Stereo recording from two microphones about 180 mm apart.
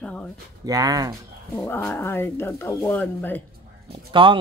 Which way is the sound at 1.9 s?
15° left (ahead or behind).